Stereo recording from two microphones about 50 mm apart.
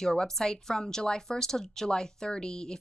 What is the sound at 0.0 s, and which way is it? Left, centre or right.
Speech, centre.